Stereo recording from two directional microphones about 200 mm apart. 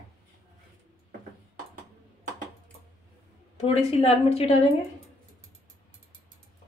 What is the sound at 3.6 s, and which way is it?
Speech, 30° left (ahead or behind).